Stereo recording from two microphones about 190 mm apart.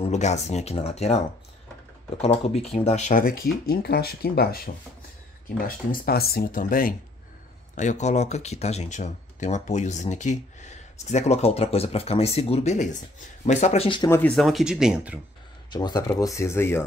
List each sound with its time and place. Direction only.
0.0 s speech: 35° left (ahead or behind)
2.2 s speech: 35° left (ahead or behind); by 4.6 s 55° left (ahead or behind)
5.9 s speech: 55° left (ahead or behind); by 14.1 s 25° left (ahead or behind)
14.1 s speech: 5° left (ahead or behind)
15.7 s speech: 20° left (ahead or behind)